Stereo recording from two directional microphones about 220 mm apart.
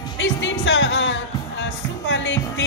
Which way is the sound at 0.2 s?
55° left (ahead or behind).